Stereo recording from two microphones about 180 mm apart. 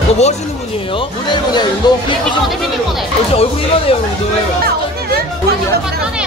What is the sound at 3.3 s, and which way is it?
Speech, 35° left (ahead or behind).